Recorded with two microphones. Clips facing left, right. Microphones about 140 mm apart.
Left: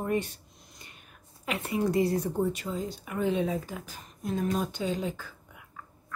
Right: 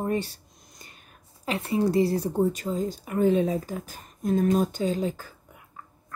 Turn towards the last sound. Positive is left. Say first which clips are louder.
# right 4 dB
turn(degrees=-40)  # may be behind; listen again after turning